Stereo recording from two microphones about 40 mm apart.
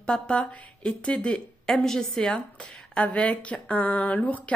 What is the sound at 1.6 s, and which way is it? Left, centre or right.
Speech, centre.